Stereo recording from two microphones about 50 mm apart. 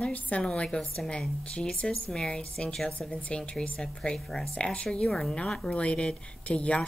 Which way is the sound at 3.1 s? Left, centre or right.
Left.